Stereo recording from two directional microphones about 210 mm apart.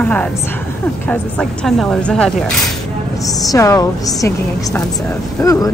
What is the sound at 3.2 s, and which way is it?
Speech, 15° left (ahead or behind).